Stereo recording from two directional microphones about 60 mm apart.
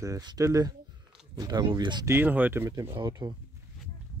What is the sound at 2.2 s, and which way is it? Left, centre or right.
Speech, right.